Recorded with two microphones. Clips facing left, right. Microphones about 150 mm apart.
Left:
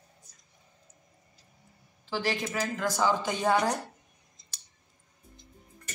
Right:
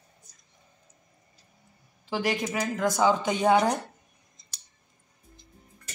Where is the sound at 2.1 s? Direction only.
15° right (ahead or behind).